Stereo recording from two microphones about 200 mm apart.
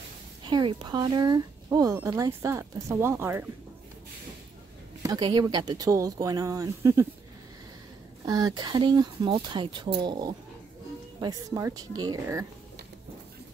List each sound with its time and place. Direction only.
0.4 s speech: 20° right (ahead or behind)
5.0 s speech: 20° right (ahead or behind)
8.3 s speech: 20° right (ahead or behind)